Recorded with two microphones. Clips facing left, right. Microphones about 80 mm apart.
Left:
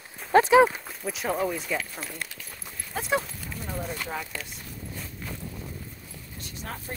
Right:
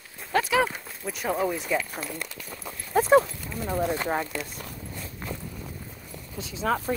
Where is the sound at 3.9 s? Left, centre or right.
Right.